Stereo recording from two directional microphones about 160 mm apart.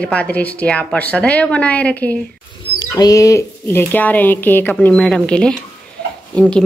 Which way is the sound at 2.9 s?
20° left (ahead or behind).